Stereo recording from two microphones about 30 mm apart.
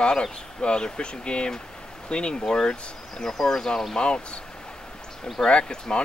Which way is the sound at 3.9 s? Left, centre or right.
Left.